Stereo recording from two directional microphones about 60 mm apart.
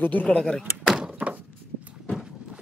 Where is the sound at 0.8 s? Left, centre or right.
Centre.